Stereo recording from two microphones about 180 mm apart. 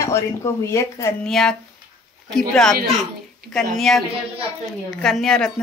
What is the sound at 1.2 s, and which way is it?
Speech, 5° left (ahead or behind).